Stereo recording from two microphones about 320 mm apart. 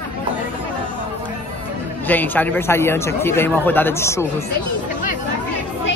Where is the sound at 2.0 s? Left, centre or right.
Centre.